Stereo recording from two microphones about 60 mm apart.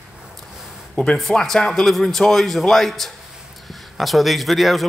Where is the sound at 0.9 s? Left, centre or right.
Centre.